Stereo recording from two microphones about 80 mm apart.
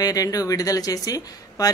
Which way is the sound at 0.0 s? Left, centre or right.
Left.